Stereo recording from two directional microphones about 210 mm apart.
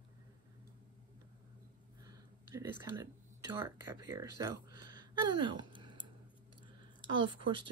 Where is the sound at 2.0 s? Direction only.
15° right (ahead or behind).